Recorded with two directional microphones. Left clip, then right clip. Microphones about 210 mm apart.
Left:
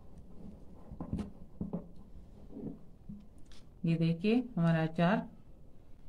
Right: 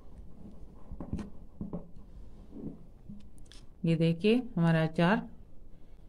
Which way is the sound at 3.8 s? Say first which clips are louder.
Right 5 dB; 45° right (ahead or behind).